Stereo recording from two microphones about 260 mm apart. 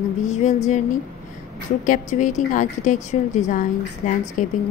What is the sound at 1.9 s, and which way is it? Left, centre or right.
A woman's voice, left.